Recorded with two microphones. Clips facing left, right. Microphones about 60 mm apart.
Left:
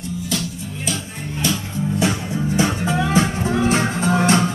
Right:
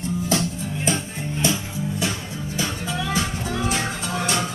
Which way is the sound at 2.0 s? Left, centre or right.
Left.